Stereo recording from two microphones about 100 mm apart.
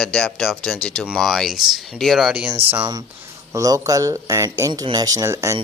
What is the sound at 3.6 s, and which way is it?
Speech, 35° right (ahead or behind).